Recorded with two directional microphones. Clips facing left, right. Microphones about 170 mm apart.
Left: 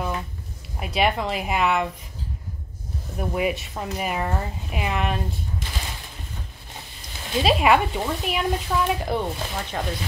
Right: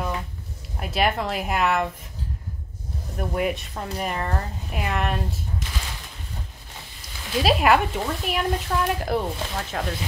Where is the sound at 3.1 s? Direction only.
Centre (ahead or behind).